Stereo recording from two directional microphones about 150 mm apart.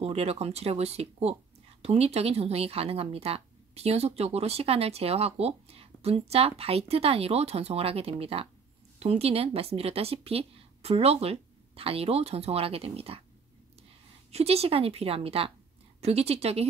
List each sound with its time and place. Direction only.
0.0 s speech: 40° right (ahead or behind)
14.3 s speech: 45° right (ahead or behind)